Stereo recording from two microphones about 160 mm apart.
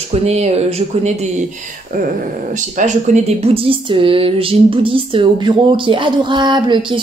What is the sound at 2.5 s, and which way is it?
Speech, 50° right (ahead or behind).